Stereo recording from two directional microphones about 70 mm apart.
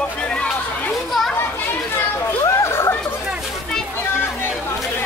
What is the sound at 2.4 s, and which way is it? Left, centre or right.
Chatter, left.